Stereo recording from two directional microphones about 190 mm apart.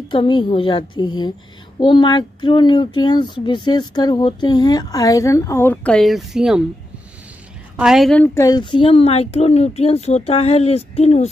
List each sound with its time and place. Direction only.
0.1 s speech: 25° left (ahead or behind); by 6.6 s centre (ahead or behind)
7.8 s a woman's voice: centre (ahead or behind)
8.4 s speech: 20° left (ahead or behind)